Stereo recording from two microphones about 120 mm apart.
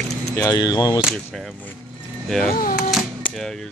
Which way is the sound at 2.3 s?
Centre (ahead or behind).